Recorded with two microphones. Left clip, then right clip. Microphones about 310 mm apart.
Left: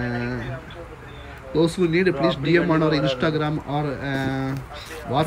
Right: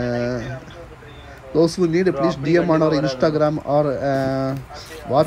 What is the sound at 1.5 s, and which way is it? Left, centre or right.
Speech, centre.